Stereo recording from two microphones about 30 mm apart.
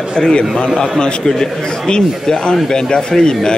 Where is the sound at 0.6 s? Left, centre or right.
Centre.